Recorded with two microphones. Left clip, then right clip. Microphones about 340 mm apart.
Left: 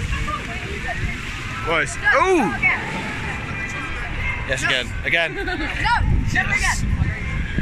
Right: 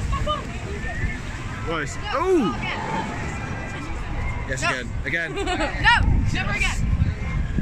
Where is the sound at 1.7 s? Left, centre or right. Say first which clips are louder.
Left 9 dB; centre.